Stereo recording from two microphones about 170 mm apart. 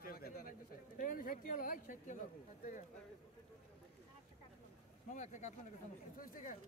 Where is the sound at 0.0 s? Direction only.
60° left (ahead or behind).